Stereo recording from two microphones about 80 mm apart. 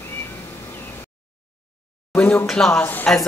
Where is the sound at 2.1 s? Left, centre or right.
Left.